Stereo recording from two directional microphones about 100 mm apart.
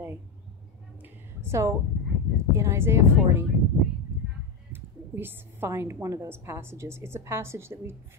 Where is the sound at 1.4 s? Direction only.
30° right (ahead or behind).